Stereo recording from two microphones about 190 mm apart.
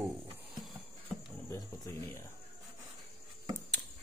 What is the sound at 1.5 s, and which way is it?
Speech, 15° left (ahead or behind).